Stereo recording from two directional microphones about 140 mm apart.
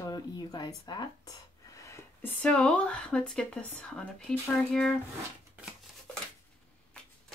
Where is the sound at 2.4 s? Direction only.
5° left (ahead or behind).